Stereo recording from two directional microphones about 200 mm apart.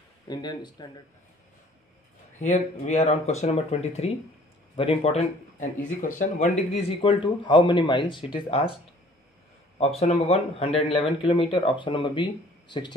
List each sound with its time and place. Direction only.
0.3 s speech: 20° left (ahead or behind)
2.4 s speech: 35° left (ahead or behind)
9.8 s speech: 30° left (ahead or behind)